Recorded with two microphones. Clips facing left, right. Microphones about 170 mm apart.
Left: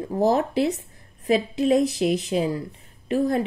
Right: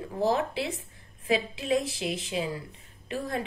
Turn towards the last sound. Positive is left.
turn(degrees=40)  # may be behind; listen again after turning